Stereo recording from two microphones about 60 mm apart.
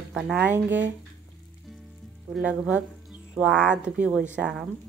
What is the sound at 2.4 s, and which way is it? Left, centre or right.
Speech, centre.